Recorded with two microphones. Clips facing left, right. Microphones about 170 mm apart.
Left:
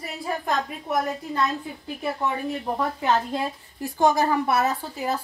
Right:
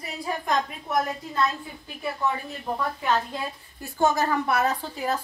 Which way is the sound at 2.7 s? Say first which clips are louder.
Left 1 dB; 25° left (ahead or behind).